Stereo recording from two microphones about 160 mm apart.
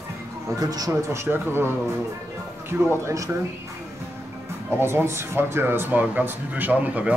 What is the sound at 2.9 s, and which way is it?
Speech, 20° right (ahead or behind).